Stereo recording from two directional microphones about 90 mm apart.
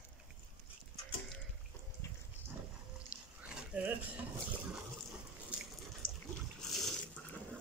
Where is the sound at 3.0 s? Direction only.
15° right (ahead or behind).